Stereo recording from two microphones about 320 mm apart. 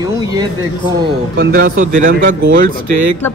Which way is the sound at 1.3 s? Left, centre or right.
Right.